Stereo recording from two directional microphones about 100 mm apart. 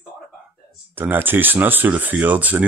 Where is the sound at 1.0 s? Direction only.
20° right (ahead or behind).